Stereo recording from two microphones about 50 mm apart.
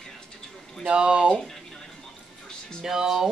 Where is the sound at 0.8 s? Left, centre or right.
Centre.